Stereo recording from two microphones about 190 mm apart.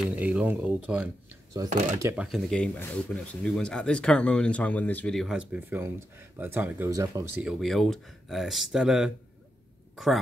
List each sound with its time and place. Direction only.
0.0 s speech: 5° right (ahead or behind)
1.6 s speech: 20° right (ahead or behind)
2.2 s speech: centre (ahead or behind); by 7.2 s 15° right (ahead or behind)
7.4 s speech: centre (ahead or behind)